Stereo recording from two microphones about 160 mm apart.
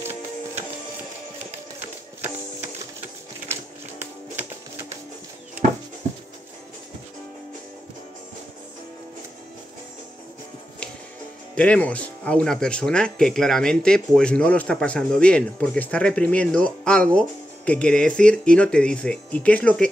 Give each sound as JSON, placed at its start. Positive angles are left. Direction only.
{"t": 0.0, "sound": "music", "side_deg": -45}
{"t": 1.8, "sound": "music", "side_deg": -15}
{"t": 11.5, "sound": "speech", "side_deg": 5}